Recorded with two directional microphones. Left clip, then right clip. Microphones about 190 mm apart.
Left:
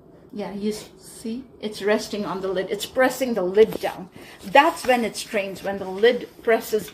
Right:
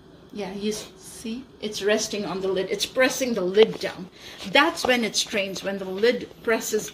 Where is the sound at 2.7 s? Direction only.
20° right (ahead or behind).